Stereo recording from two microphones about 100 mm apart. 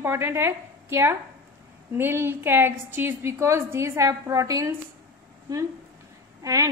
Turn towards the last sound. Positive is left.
turn(degrees=-35)  # may be behind; listen again after turning